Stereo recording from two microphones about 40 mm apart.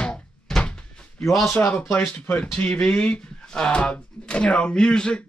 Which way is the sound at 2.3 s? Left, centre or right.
Left.